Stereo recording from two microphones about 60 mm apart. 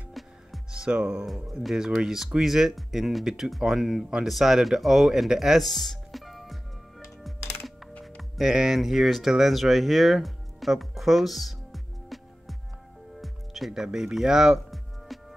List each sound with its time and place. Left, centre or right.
0.2 s music: centre
0.7 s speech: centre
1.2 s speech: centre
7.2 s music: centre
8.2 s speech: centre
13.2 s music: centre